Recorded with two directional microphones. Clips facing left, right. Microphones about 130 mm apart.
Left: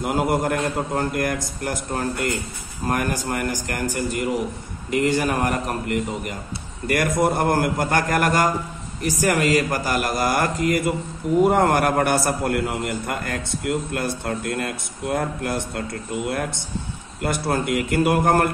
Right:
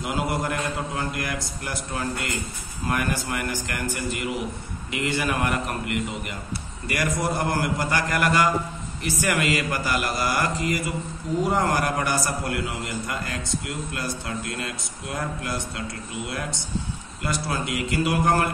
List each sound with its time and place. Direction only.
0.0 s a man's voice: 50° left (ahead or behind)
6.9 s a man's voice: 50° left (ahead or behind)